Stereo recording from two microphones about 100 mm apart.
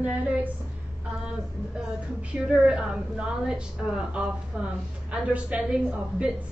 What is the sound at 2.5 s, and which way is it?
A woman's voice, 10° right (ahead or behind).